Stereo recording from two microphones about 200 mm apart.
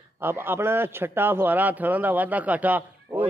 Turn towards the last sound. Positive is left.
turn(degrees=-10)  # may be behind; listen again after turning